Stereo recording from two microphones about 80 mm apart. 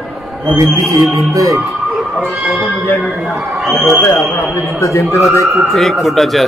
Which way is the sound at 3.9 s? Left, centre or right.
Left.